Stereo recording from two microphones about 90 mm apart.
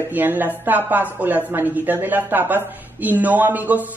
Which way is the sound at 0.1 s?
20° right (ahead or behind).